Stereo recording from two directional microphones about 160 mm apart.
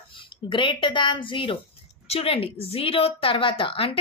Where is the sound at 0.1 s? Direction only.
30° left (ahead or behind).